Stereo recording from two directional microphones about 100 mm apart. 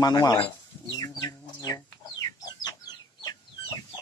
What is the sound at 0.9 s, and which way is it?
Chicken, 40° left (ahead or behind).